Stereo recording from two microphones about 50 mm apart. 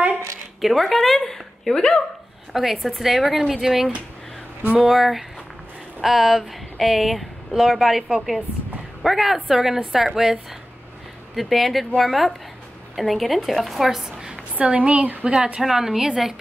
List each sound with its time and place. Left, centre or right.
0.6 s a woman's voice: centre
2.5 s a woman's voice: centre
14.5 s a woman's voice: right
15.6 s a woman's voice: centre